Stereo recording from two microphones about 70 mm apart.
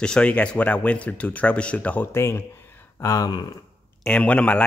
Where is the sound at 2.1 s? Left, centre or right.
Left.